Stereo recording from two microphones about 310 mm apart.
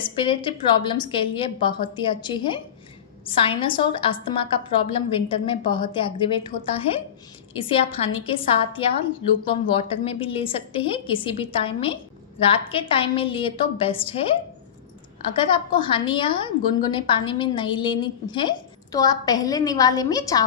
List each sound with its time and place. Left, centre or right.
0.0 s a woman's voice: centre